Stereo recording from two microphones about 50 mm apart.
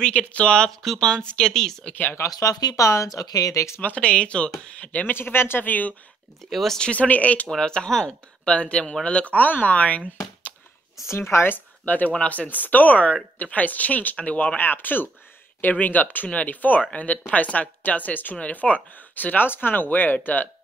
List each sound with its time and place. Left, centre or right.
0.0 s speech: left
0.7 s speech: centre
1.1 s speech: left
2.7 s speech: left
3.5 s speech: left
3.8 s speech: left
5.0 s speech: left
6.5 s speech: centre
6.8 s speech: left
7.5 s speech: centre
11.1 s a woman's voice: left
14.6 s a woman's voice: left